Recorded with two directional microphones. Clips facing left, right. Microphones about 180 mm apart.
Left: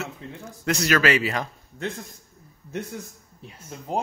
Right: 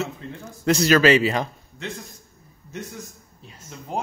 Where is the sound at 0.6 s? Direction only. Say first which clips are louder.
Right 5 dB; 30° right (ahead or behind).